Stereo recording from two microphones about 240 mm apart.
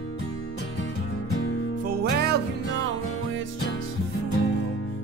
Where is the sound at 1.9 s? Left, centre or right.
Right.